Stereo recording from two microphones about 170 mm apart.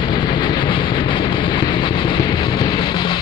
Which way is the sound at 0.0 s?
30° left (ahead or behind).